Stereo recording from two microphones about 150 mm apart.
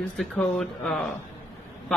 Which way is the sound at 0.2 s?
Centre (ahead or behind).